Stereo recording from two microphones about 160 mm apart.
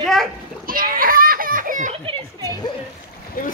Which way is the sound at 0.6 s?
65° right (ahead or behind).